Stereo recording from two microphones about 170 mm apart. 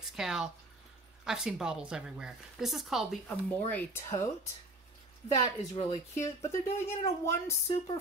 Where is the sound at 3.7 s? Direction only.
15° left (ahead or behind).